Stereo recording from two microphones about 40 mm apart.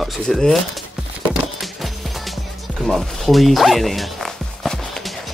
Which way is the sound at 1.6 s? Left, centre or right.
Centre.